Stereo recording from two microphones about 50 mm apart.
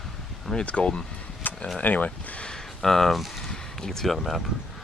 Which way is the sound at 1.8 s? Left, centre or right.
Left.